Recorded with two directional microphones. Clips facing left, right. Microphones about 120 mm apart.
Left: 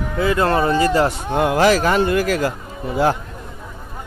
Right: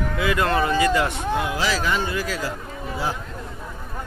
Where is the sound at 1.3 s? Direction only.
55° left (ahead or behind).